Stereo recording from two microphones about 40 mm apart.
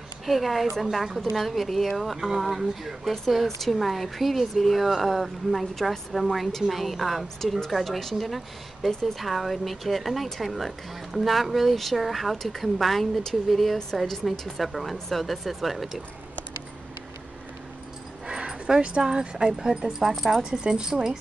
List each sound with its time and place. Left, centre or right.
0.3 s speech: centre
2.1 s speech: centre
18.2 s dog: centre
18.8 s speech: centre
20.4 s speech: centre